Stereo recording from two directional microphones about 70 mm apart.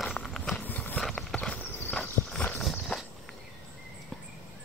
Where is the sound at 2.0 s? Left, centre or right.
Centre.